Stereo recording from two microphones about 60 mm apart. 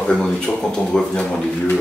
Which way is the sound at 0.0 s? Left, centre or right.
Centre.